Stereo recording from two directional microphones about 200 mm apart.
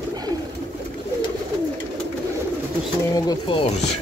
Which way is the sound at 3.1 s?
20° left (ahead or behind).